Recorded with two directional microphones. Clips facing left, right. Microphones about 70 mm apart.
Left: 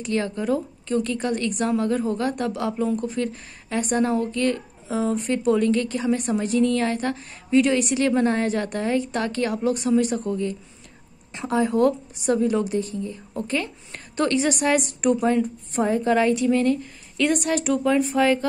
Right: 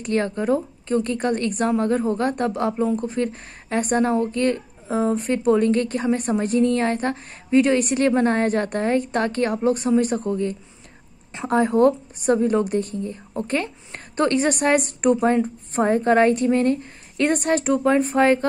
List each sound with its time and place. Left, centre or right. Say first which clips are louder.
0.0 s speech: right 3 dB; right